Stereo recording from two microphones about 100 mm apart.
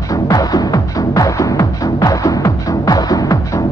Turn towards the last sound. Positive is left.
turn(degrees=35)  # may be behind; listen again after turning